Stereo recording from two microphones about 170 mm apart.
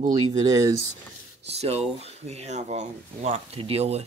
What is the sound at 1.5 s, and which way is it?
Speech, 35° right (ahead or behind).